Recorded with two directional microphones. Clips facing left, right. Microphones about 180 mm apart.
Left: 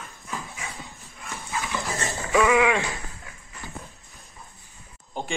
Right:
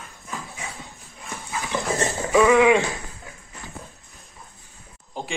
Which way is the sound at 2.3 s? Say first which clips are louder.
Right 4 dB; centre (ahead or behind).